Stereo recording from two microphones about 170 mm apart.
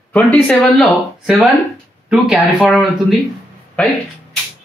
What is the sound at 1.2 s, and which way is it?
Speech, 5° right (ahead or behind).